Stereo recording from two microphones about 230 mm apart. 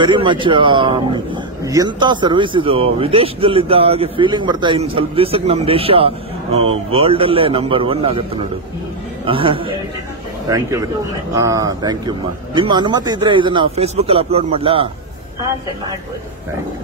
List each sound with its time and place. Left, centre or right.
0.0 s speech: right